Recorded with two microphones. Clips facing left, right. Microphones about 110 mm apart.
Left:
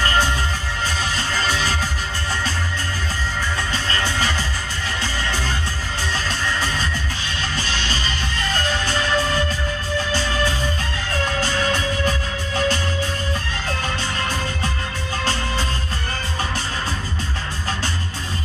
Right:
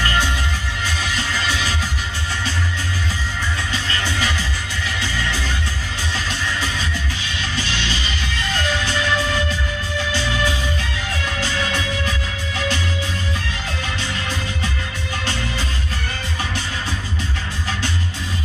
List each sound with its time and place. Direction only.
0.0 s music: 35° left (ahead or behind)
3.7 s music: 40° left (ahead or behind)